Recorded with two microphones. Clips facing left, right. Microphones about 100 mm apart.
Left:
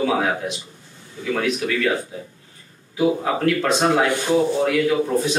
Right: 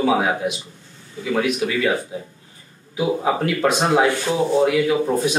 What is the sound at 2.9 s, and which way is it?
Speech, 10° right (ahead or behind).